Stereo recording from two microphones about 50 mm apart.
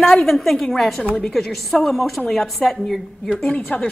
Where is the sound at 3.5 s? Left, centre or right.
Left.